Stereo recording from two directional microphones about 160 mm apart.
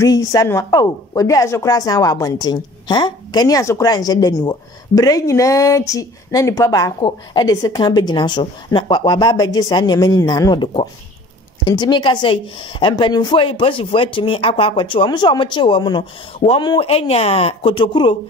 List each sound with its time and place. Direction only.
0.0 s a woman's voice: 20° left (ahead or behind)